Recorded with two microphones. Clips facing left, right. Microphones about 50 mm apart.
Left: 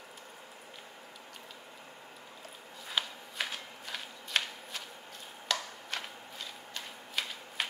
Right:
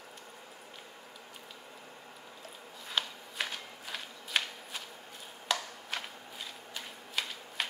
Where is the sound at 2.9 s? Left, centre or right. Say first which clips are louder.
Even; centre.